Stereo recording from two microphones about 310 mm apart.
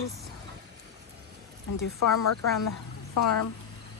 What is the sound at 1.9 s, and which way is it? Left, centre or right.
Speech, left.